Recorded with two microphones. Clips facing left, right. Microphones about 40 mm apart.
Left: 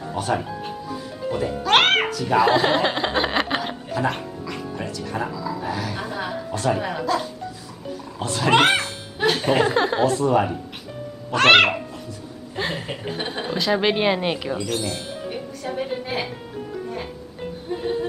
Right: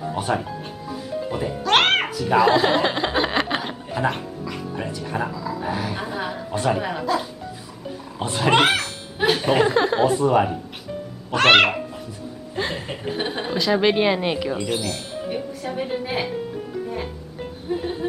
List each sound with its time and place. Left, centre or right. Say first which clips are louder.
0.0 s speech: even; centre
0.4 s music: left 2 dB; centre
2.0 s speech: right 1 dB; centre
3.9 s music: right 1 dB; centre
4.8 s speech: even; centre
5.1 s a sound: right 1 dB; centre
6.5 s speech: right 1 dB; centre
6.8 s speech: even; centre
8.2 s speech: right 1 dB; centre
8.5 s music: left 1 dB; centre
9.2 s chuckle: right 1 dB; centre
10.0 s a woman's voice: right 1 dB; centre
15.2 s music: right 4 dB; centre